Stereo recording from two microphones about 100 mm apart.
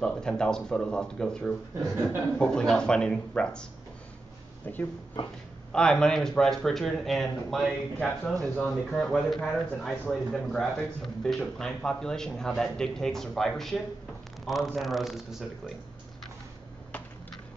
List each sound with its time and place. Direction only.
0.0 s speech: 5° left (ahead or behind)
4.7 s speech: 20° left (ahead or behind)
5.7 s speech: 5° left (ahead or behind)